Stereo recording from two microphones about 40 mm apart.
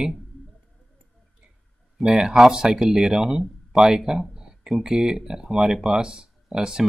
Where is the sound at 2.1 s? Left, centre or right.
Centre.